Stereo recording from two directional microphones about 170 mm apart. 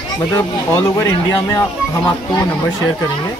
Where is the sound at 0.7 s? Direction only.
15° left (ahead or behind).